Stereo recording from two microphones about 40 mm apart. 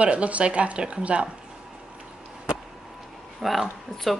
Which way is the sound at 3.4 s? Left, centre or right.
Centre.